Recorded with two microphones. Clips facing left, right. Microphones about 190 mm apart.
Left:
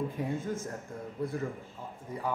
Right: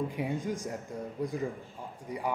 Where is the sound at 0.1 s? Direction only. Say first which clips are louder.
Right 1 dB; 15° right (ahead or behind).